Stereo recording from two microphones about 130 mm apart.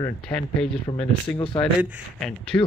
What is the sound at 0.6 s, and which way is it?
Speech, centre (ahead or behind).